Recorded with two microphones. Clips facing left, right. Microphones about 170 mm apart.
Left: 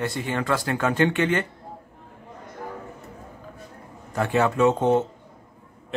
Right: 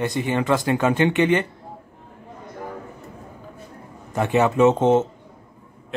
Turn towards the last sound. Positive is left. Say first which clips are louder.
# right 3 dB
turn(degrees=-20)  # may be behind; listen again after turning